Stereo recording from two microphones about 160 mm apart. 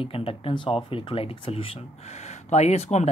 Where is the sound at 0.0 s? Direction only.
35° left (ahead or behind).